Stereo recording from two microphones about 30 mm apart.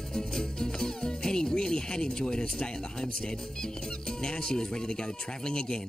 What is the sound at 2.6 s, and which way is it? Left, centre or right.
Speech, left.